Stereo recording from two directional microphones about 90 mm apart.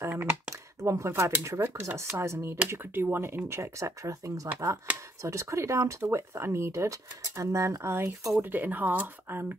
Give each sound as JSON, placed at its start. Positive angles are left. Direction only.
{"t": 0.0, "sound": "speech", "side_deg": -25}
{"t": 4.9, "sound": "speech", "side_deg": -15}
{"t": 5.2, "sound": "speech", "side_deg": -35}